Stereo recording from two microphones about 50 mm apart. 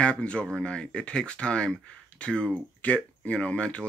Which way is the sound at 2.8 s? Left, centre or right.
Left.